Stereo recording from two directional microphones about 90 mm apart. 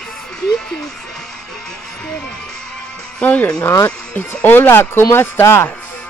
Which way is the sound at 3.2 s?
15° left (ahead or behind).